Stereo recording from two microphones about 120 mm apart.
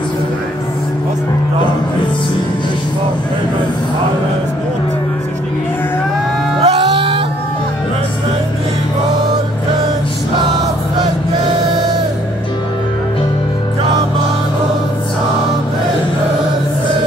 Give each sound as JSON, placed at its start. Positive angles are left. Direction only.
{"t": 6.6, "sound": "music", "side_deg": -55}